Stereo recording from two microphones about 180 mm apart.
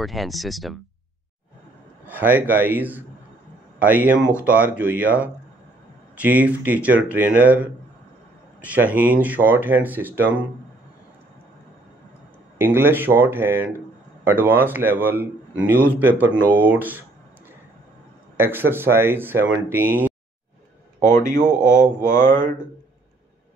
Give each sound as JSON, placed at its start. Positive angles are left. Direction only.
{"t": 0.0, "sound": "speech", "side_deg": 0}
{"t": 2.0, "sound": "a man's voice", "side_deg": -10}
{"t": 12.5, "sound": "a man's voice", "side_deg": -10}
{"t": 18.4, "sound": "a man's voice", "side_deg": -10}
{"t": 21.0, "sound": "speech", "side_deg": 15}